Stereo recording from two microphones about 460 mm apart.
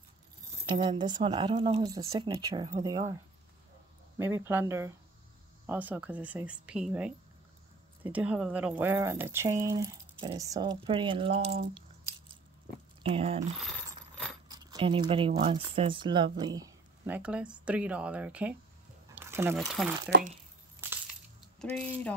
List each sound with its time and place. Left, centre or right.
0.7 s speech: centre
4.2 s speech: centre
13.0 s speech: centre
14.5 s speech: centre
20.1 s speech: centre
21.4 s coin: centre